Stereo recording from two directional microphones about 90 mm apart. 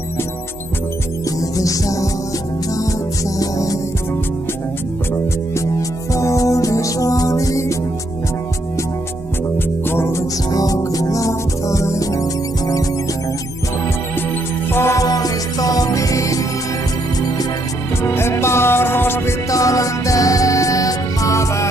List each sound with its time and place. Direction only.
1.4 s music: 40° left (ahead or behind)
3.3 s music: 40° left (ahead or behind)
5.8 s music: 35° left (ahead or behind)
9.8 s music: 30° left (ahead or behind)
10.5 s music: 40° left (ahead or behind)
14.7 s music: 30° left (ahead or behind)
15.0 s music: 40° left (ahead or behind)
18.0 s music: 30° left (ahead or behind)
19.5 s music: 40° left (ahead or behind)